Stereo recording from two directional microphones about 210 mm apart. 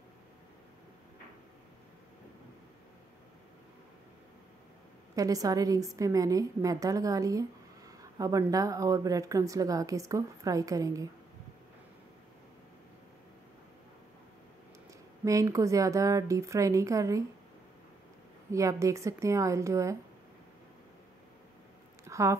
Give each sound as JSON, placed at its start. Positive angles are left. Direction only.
{"t": 5.1, "sound": "speech", "side_deg": -15}
{"t": 15.2, "sound": "speech", "side_deg": -15}
{"t": 18.5, "sound": "speech", "side_deg": -15}
{"t": 22.0, "sound": "a sound", "side_deg": -15}